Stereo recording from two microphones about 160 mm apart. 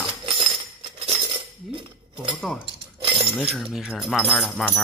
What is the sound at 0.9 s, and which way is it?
Cutlery, 40° right (ahead or behind).